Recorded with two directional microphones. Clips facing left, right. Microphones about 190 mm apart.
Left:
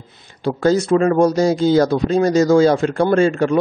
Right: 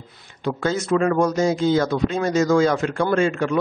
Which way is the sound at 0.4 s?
35° left (ahead or behind).